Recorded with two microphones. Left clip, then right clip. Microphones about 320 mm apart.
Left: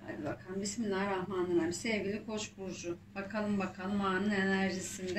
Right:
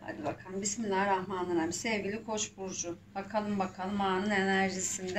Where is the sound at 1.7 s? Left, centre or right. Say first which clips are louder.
Right 2 dB; right.